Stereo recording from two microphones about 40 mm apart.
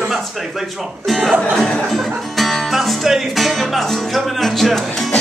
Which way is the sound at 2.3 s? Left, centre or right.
Centre.